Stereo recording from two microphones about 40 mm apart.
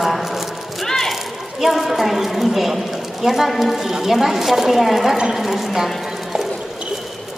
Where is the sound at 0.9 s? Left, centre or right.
Centre.